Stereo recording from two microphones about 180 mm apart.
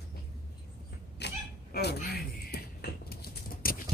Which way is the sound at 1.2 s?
65° left (ahead or behind).